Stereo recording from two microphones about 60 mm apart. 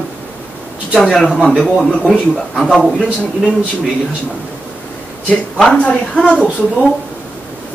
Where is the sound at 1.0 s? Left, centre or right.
Centre.